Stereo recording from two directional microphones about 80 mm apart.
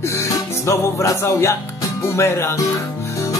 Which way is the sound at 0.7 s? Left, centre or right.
Left.